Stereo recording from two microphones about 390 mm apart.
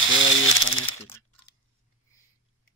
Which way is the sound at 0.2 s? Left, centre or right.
Left.